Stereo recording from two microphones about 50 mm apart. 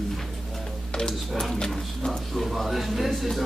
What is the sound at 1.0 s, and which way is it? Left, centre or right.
Speech, centre.